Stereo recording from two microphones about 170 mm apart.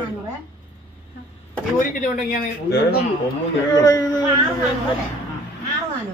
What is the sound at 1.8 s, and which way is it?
Speech, 50° left (ahead or behind).